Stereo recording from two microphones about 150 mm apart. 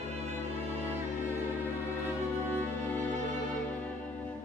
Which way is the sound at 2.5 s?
10° left (ahead or behind).